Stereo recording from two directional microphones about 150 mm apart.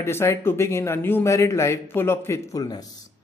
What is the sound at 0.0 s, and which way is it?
A man's voice, 15° left (ahead or behind).